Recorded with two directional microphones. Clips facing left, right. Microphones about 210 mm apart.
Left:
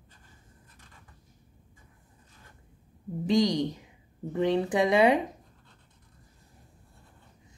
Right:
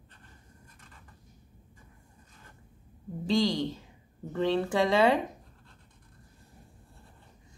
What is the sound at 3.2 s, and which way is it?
A woman's voice, 15° left (ahead or behind).